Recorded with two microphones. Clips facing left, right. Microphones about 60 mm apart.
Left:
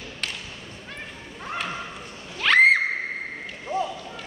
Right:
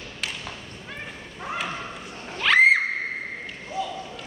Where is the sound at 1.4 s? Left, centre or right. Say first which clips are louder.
Right 1 dB; centre.